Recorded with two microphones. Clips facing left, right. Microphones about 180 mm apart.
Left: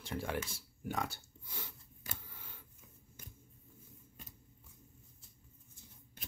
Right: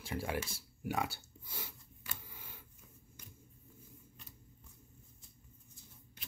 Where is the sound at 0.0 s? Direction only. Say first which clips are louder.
Even; 10° right (ahead or behind).